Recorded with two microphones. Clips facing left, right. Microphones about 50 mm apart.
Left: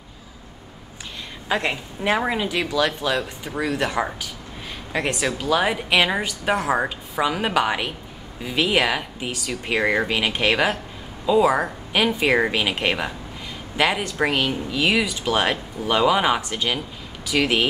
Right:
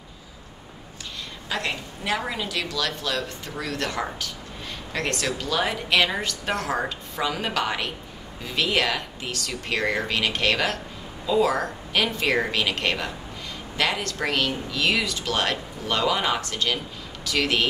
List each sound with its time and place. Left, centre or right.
1.5 s a woman's voice: left